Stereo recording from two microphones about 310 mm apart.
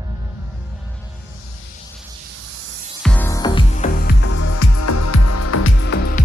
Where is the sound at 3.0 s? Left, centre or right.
Centre; by 4.1 s left.